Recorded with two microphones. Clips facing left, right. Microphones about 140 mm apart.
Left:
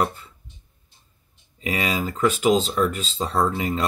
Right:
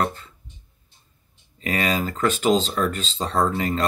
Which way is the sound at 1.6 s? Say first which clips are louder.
Right 1 dB; 10° left (ahead or behind).